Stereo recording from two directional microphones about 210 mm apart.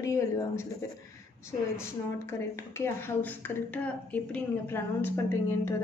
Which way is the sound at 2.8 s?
10° left (ahead or behind).